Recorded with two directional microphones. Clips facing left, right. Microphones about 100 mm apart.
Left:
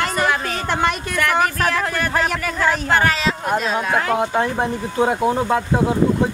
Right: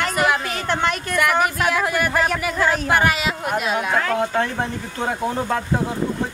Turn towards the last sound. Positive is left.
turn(degrees=20)  # may be behind; listen again after turning